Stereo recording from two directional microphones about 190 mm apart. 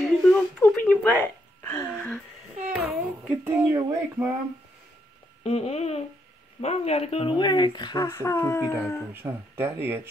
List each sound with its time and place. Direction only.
0.0 s music: centre (ahead or behind)
2.7 s child singing: 5° right (ahead or behind)
5.4 s a sound: 30° left (ahead or behind)
6.6 s speech: 35° left (ahead or behind); by 9.0 s 10° left (ahead or behind)
9.1 s speech: 10° right (ahead or behind)